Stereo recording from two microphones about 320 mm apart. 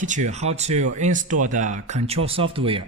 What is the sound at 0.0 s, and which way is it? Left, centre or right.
Speech, right.